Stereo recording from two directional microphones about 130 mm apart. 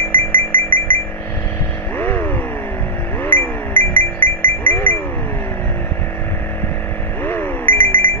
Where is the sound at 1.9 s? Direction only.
15° left (ahead or behind).